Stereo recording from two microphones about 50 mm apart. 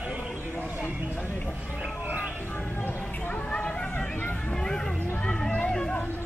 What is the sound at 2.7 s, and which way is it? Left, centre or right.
Speech, left.